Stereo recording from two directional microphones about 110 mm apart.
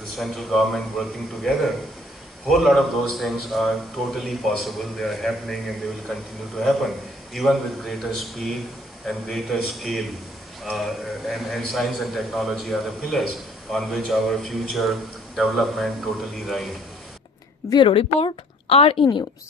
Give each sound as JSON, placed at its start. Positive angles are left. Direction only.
{"t": 0.2, "sound": "a man's voice", "side_deg": 0}
{"t": 17.6, "sound": "speech", "side_deg": 50}